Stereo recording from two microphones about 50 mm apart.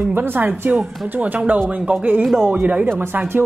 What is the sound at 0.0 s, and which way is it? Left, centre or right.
A woman's voice, right.